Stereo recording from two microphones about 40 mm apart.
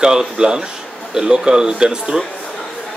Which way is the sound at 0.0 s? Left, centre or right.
Centre.